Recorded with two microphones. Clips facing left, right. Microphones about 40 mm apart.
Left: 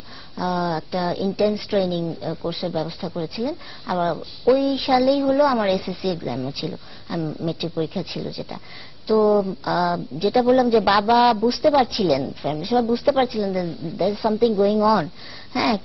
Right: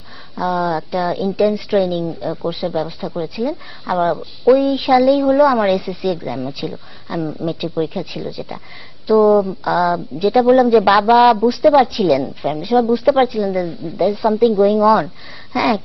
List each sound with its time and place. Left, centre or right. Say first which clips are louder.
0.4 s speech: right 5 dB; centre
0.7 s a woman's voice: right 5 dB; centre
10.9 s a woman's voice: right 6 dB; centre
13.6 s a woman's voice: right 5 dB; centre
14.0 s a woman's voice: right 5 dB; centre
15.5 s a sound: right 4 dB; centre